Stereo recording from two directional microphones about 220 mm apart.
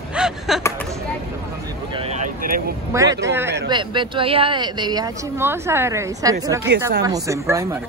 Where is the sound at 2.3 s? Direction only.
40° right (ahead or behind).